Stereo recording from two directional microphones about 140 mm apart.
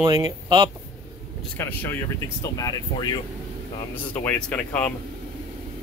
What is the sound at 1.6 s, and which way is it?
Speech, 15° left (ahead or behind).